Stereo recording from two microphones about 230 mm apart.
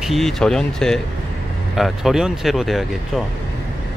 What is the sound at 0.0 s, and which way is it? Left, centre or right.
Speech, centre.